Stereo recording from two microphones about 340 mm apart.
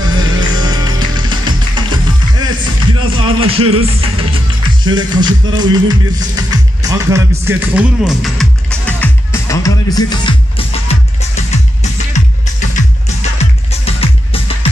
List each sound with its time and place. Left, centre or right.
0.0 s music: centre
3.1 s speech: centre
3.7 s music: centre
13.4 s music: centre